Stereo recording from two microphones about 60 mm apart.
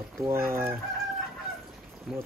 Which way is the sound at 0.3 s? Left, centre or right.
Right.